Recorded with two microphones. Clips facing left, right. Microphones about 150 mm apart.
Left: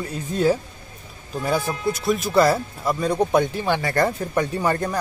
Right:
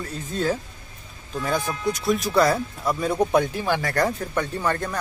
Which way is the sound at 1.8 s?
Centre (ahead or behind).